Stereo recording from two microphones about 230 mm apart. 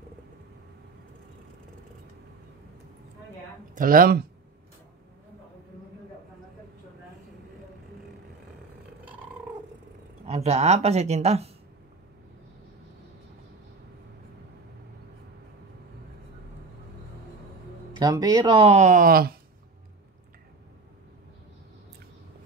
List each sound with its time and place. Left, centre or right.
3.7 s speech: right
10.2 s speech: right
17.9 s speech: centre; by 19.3 s right